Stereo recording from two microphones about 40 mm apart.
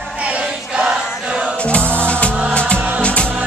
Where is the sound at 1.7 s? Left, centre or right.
Left.